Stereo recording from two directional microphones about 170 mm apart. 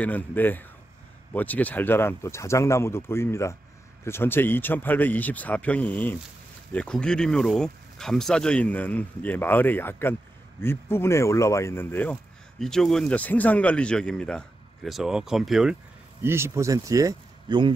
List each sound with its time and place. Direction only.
0.0 s speech: 10° left (ahead or behind)
16.3 s speech: 15° right (ahead or behind)